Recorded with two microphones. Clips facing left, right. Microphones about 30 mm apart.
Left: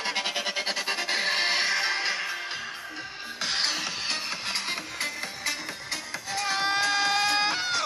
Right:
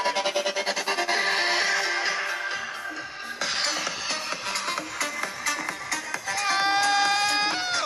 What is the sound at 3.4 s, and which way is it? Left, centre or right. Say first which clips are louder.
Music: right 1 dB; centre.